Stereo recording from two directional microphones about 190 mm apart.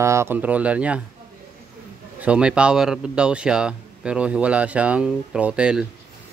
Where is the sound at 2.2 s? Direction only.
5° right (ahead or behind).